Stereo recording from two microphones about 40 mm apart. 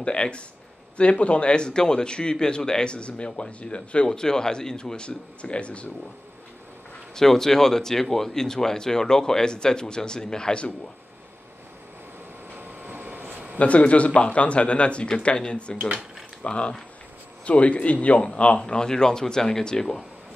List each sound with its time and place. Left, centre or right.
0.0 s a man's voice: left
7.2 s speech: centre
12.5 s vehicle: right
13.6 s a man's voice: left; by 20.1 s centre